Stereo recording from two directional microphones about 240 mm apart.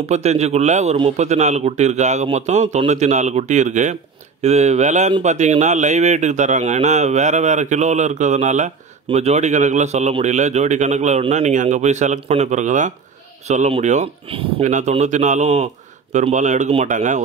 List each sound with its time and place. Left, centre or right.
0.0 s speech: right